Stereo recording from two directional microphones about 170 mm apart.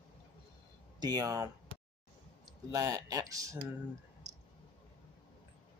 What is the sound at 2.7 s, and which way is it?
Speech, 20° right (ahead or behind).